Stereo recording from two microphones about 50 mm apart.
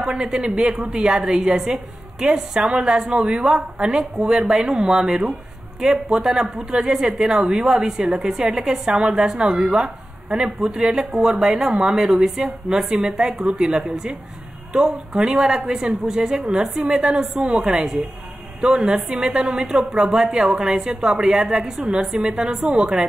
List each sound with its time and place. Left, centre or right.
0.1 s a woman's voice: centre
10.3 s a woman's voice: centre